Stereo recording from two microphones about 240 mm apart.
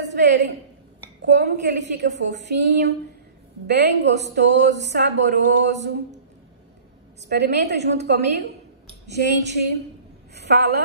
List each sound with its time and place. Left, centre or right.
1.2 s speech: right
7.2 s a woman's voice: right